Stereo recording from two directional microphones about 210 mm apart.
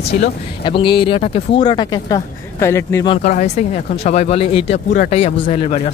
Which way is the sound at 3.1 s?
35° left (ahead or behind).